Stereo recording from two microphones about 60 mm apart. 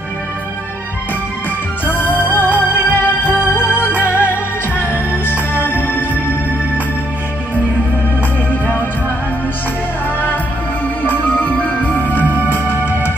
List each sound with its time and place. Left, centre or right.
1.9 s music: left
11.1 s music: left